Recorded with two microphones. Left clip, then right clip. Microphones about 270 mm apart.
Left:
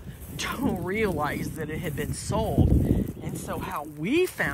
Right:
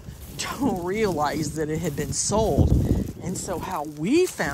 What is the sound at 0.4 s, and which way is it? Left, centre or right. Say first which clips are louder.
Speech: right 3 dB; centre.